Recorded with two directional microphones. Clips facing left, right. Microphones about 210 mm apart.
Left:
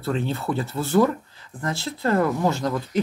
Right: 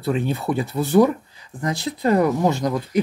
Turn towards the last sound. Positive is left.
turn(degrees=-15)  # may be behind; listen again after turning